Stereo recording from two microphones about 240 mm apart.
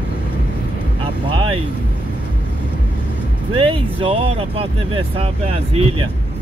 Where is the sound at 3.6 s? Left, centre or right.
Right.